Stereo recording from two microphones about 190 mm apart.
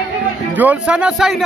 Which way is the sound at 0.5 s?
10° right (ahead or behind).